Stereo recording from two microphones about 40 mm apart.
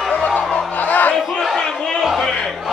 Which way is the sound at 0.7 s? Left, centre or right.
Left.